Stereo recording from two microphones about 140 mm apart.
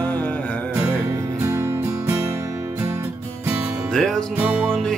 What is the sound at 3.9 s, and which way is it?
Music, 5° left (ahead or behind).